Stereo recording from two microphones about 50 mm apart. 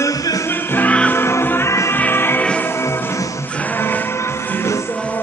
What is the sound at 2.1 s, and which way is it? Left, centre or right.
Music, left.